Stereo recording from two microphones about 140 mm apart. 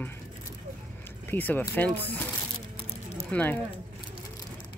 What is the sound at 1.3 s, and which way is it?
Speech, 15° left (ahead or behind).